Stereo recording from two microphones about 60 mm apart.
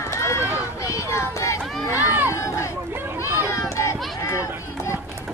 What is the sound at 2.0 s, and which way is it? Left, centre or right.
Crowd, right.